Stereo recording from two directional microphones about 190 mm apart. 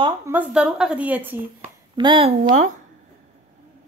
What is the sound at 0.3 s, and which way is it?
A woman's voice, 5° right (ahead or behind).